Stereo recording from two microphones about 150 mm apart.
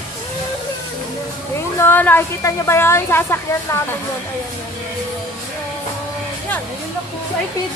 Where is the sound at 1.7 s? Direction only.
15° left (ahead or behind).